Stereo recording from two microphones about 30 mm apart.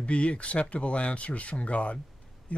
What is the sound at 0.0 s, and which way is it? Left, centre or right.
Speech, left.